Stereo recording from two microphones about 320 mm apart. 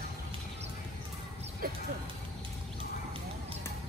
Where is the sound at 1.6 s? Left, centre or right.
Right.